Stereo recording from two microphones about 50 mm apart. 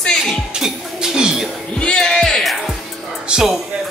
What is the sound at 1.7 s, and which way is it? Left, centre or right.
Music, centre.